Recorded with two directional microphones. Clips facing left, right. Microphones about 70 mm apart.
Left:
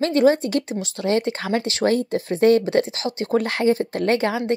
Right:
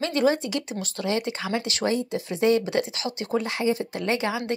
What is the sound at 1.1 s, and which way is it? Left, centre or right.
Speech, left.